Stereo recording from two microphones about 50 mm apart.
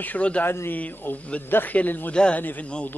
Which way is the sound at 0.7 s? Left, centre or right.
Left.